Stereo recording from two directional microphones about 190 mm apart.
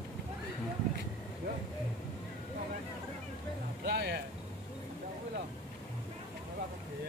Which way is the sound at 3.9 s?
55° right (ahead or behind).